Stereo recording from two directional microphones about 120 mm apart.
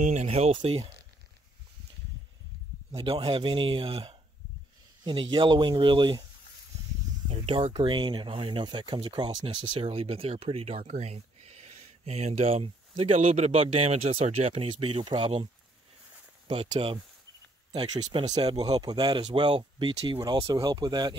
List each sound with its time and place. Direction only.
0.0 s speech: 70° right (ahead or behind)
0.6 s speech: 45° right (ahead or behind)
3.0 s a man's voice: 45° right (ahead or behind)
7.2 s speech: 50° right (ahead or behind)
14.7 s speech: 45° right (ahead or behind)
16.4 s a man's voice: 40° right (ahead or behind)